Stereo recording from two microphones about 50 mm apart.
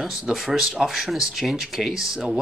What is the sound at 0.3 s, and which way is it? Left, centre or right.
Speech, centre.